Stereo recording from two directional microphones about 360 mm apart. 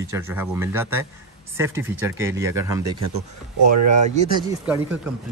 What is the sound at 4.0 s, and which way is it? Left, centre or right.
Speech, centre.